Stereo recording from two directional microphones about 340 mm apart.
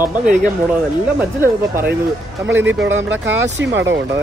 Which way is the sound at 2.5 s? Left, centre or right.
Right.